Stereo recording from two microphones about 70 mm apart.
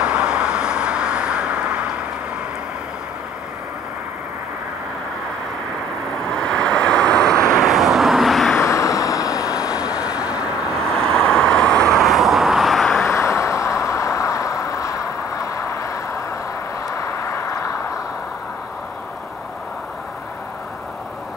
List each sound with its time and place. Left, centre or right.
0.0 s vehicle: centre
6.3 s vehicle: centre
7.6 s vehicle: centre
8.5 s vehicle: left
9.5 s vehicle: centre
10.9 s vehicle: centre
13.0 s vehicle: left